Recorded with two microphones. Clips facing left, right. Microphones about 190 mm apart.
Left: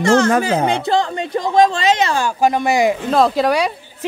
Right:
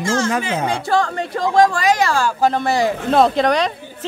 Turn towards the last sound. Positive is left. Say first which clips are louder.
# left 1 dB
turn(degrees=10)  # may be behind; listen again after turning